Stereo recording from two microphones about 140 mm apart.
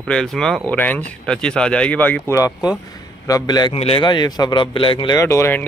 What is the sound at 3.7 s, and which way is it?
A man's voice, 45° left (ahead or behind).